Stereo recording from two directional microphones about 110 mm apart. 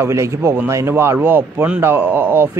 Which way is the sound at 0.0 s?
25° right (ahead or behind).